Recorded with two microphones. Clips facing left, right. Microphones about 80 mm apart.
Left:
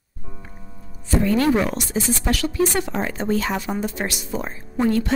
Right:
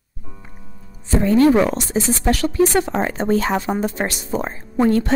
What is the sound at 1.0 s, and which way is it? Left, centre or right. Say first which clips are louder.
Speech: right 5 dB; right.